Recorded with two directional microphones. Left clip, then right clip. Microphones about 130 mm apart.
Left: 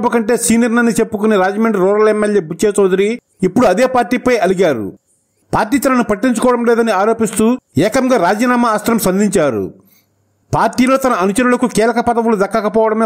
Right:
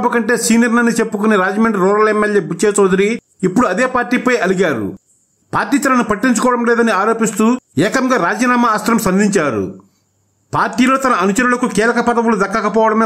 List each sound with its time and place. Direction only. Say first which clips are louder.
0.0 s a man's voice: left 1 dB; 40° left (ahead or behind)